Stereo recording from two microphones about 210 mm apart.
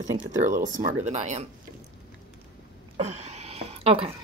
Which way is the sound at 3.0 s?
30° right (ahead or behind).